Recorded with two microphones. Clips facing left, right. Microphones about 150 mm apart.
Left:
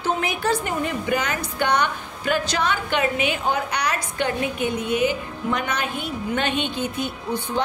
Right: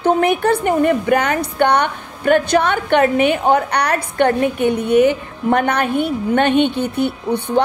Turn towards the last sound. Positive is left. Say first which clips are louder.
# right 8 dB
turn(degrees=-65)  # may be behind; listen again after turning